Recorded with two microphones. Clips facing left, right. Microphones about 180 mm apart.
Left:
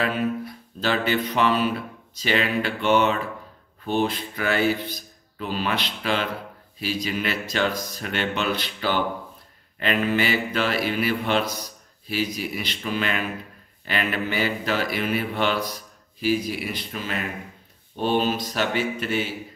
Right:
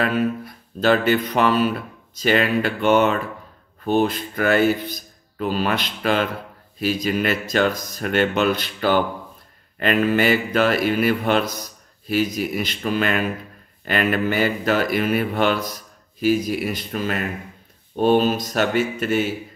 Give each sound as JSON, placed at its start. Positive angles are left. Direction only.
{"t": 0.7, "sound": "speech", "side_deg": -45}